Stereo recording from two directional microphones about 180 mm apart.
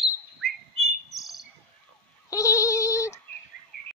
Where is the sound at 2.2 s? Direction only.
15° left (ahead or behind).